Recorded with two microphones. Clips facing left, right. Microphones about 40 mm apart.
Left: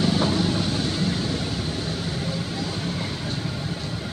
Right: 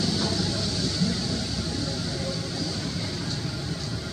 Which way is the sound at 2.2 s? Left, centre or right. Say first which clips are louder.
Left 2 dB; left.